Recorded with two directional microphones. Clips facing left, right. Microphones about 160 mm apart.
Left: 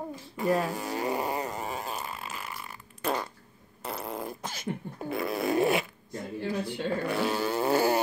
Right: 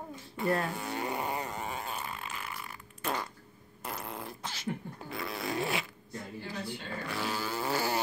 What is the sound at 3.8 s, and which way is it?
Fart, 35° left (ahead or behind).